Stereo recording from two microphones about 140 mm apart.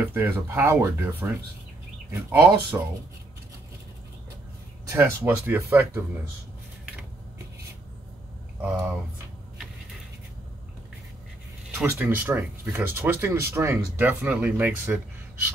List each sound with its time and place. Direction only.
0.1 s speech: 15° right (ahead or behind)
4.8 s speech: 20° right (ahead or behind)
8.5 s speech: 10° right (ahead or behind)
11.8 s speech: 15° right (ahead or behind)